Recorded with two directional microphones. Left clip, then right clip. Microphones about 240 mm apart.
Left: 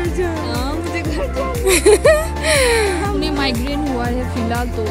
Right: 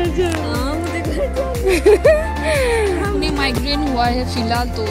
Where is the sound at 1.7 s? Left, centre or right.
Centre.